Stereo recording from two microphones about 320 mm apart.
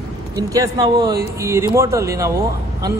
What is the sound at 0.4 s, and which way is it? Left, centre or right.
Speech, centre.